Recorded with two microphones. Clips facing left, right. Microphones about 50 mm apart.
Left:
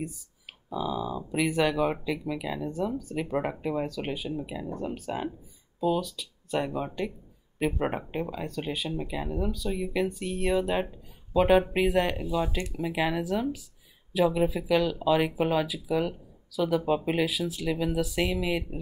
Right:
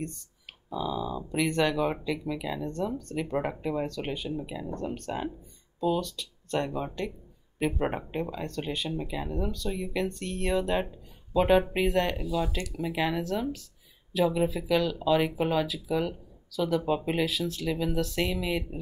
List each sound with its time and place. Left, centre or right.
0.7 s speech: centre
12.2 s speech: left
12.7 s speech: centre